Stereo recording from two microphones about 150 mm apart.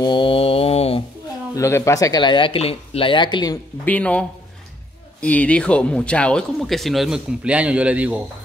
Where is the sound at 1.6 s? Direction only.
20° left (ahead or behind).